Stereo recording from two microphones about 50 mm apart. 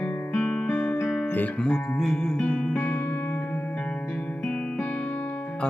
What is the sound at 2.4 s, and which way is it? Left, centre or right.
Music, left.